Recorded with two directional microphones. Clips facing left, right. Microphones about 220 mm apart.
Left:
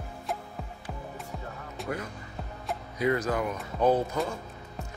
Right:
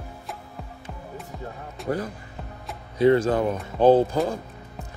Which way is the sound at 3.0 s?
30° right (ahead or behind).